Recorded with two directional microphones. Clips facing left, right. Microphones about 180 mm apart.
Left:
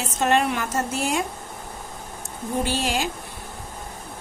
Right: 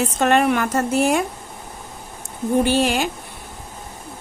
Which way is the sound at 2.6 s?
60° right (ahead or behind).